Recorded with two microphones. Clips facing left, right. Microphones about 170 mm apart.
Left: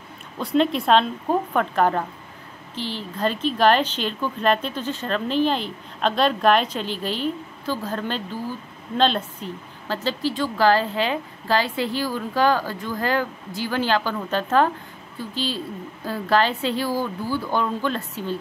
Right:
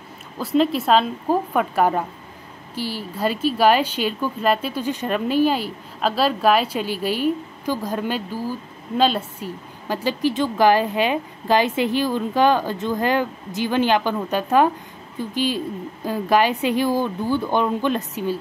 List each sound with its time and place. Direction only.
0.4 s a woman's voice: centre (ahead or behind); by 18.3 s 15° right (ahead or behind)